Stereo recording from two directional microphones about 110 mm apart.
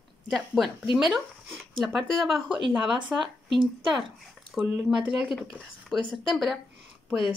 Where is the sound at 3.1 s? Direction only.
15° right (ahead or behind).